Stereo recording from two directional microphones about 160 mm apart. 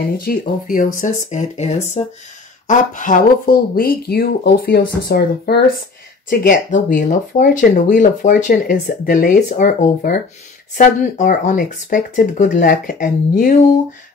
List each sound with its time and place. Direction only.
0.2 s speech: 60° left (ahead or behind); by 2.0 s 45° left (ahead or behind)
2.7 s speech: 55° left (ahead or behind); by 5.6 s 75° left (ahead or behind)
6.3 s speech: 60° left (ahead or behind)